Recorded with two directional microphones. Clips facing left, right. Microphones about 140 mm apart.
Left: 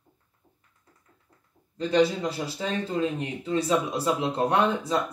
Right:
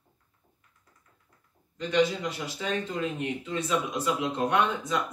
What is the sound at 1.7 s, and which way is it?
Speech, 30° left (ahead or behind).